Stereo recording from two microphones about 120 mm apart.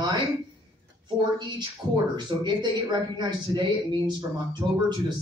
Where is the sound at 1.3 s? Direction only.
40° right (ahead or behind).